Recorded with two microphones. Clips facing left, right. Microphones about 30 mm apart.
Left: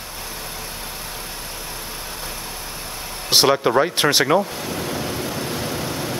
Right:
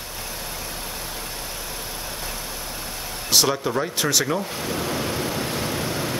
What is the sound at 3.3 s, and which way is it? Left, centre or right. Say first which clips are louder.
Speech: left 5 dB; left.